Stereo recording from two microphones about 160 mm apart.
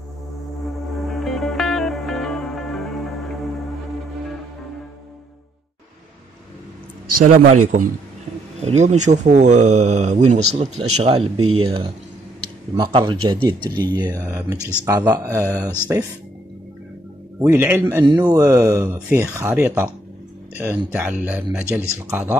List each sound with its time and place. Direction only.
1.0 s music: centre (ahead or behind)
7.2 s a man's voice: 60° right (ahead or behind)
8.5 s speech: 45° right (ahead or behind); by 15.7 s 20° right (ahead or behind)
17.5 s speech: 15° right (ahead or behind)